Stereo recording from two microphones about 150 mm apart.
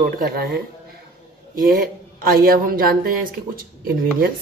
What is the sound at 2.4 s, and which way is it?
A woman's voice, 75° right (ahead or behind).